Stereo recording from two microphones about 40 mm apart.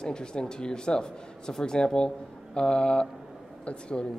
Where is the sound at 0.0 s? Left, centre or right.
Left.